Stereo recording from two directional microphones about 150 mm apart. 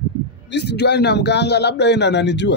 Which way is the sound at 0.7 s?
90° left.